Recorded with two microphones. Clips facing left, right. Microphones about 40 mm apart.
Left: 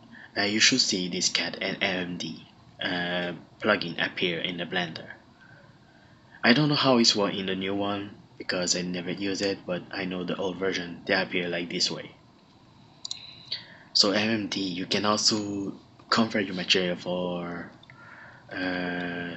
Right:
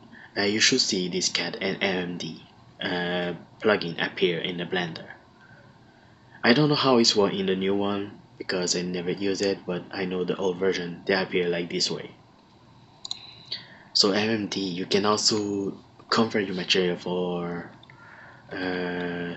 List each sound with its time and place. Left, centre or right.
0.1 s speech: centre
6.4 s speech: centre
13.0 s clicking: right
13.5 s speech: centre
18.0 s a sound: centre
19.0 s speech: centre